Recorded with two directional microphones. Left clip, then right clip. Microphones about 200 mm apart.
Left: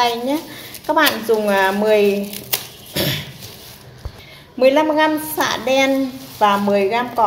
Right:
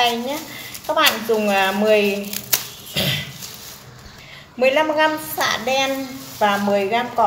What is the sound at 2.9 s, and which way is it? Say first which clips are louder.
Cough: even; 30° left (ahead or behind).